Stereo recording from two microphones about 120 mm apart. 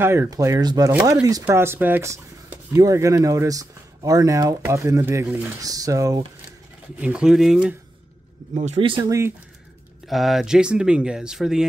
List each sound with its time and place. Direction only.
0.0 s speech: 20° right (ahead or behind)
1.6 s speech: 20° right (ahead or behind)
7.0 s speech: 10° right (ahead or behind)
8.5 s speech: 70° right (ahead or behind)
10.0 s speech: centre (ahead or behind)